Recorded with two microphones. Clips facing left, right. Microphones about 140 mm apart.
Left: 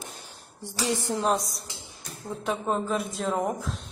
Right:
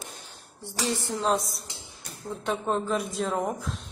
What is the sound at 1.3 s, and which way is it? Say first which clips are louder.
A woman's voice: even; centre (ahead or behind).